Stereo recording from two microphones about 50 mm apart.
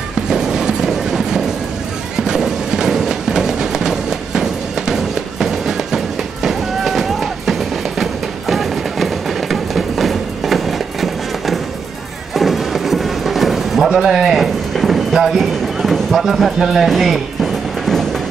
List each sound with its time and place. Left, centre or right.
0.3 s train: centre
2.1 s music: centre